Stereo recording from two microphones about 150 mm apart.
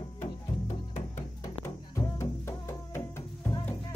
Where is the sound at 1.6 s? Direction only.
20° left (ahead or behind).